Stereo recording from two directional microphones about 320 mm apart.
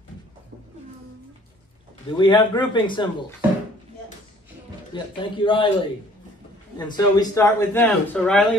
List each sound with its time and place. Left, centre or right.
2.1 s a man's voice: centre
4.9 s a man's voice: centre